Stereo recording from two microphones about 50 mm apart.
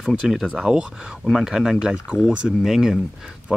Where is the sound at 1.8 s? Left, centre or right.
Centre.